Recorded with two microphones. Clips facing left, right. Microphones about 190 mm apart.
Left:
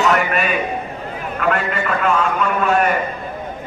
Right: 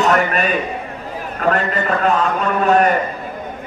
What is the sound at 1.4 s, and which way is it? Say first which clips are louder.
A man's voice: right 2 dB; 40° right (ahead or behind).